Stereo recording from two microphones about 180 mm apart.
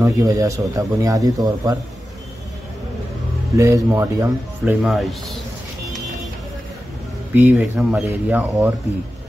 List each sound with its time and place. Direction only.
0.0 s speech: 20° right (ahead or behind)
3.5 s speech: 15° right (ahead or behind)
4.8 s speech: centre (ahead or behind)
7.3 s speech: 10° right (ahead or behind)